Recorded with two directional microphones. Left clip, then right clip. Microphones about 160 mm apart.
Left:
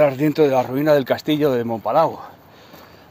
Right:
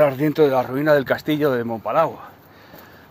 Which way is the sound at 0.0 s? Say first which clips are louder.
Even; 10° left (ahead or behind).